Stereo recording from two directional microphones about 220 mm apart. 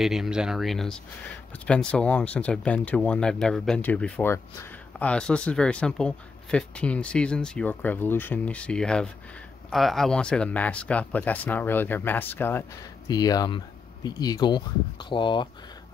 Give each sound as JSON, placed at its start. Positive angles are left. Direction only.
{"t": 0.0, "sound": "speech", "side_deg": 0}